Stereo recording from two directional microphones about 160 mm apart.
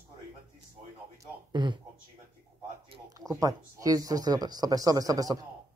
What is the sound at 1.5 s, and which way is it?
Speech, 30° right (ahead or behind).